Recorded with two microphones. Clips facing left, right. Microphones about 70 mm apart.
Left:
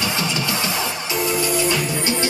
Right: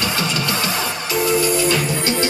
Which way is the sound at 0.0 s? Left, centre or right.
Centre.